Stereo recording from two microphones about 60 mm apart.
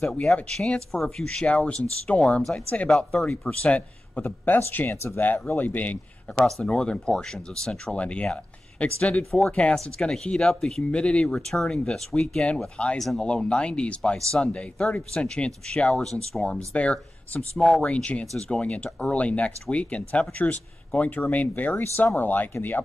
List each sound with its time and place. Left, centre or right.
0.0 s speech: centre
4.2 s speech: left
6.3 s speech: centre; by 22.8 s left